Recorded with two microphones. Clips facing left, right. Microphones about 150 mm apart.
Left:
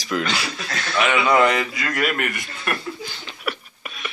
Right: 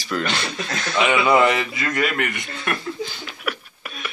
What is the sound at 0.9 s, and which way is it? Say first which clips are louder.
A man's voice: right 1 dB; 10° right (ahead or behind).